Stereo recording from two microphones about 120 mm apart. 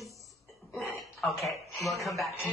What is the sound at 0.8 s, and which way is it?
Speech, centre (ahead or behind).